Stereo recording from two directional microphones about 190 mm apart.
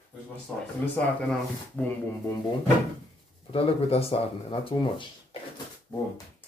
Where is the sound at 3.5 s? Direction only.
30° left (ahead or behind).